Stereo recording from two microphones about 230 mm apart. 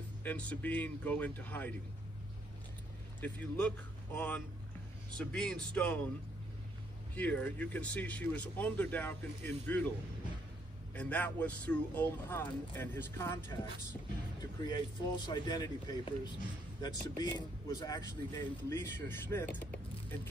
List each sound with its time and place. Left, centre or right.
0.2 s speech: centre
3.2 s a man's voice: centre
7.2 s speech: centre
11.0 s speech: centre